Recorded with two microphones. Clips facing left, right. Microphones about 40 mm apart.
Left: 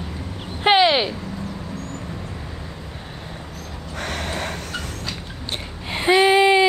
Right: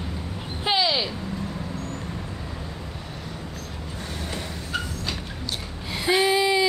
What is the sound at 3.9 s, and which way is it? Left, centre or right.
Vehicle, left.